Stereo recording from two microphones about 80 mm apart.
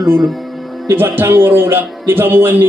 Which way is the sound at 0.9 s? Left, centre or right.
Right.